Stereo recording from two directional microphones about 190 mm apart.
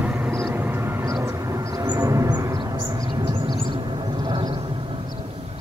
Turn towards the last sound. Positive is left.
turn(degrees=-25)  # may be behind; listen again after turning